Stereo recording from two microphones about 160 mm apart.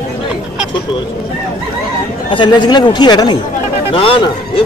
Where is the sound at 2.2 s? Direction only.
30° left (ahead or behind).